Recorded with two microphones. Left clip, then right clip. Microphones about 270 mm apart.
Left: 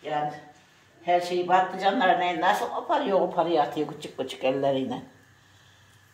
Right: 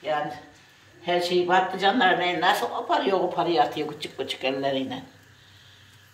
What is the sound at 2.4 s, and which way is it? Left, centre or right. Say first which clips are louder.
A woman's voice: right 1 dB; left.